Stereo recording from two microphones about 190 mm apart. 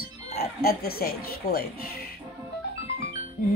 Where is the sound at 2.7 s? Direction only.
60° left (ahead or behind).